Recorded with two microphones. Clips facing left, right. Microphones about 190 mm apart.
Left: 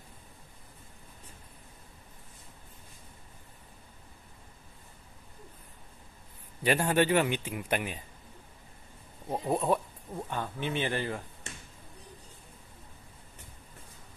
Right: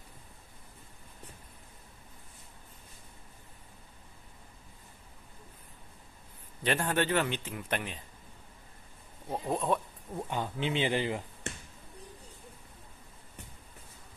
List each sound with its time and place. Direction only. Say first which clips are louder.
6.6 s a man's voice: left 4 dB; 10° left (ahead or behind)
9.3 s a man's voice: left 2 dB; 10° left (ahead or behind)
10.1 s speech: right 1 dB; 15° right (ahead or behind)